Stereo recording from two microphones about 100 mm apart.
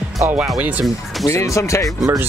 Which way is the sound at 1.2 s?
30° left (ahead or behind).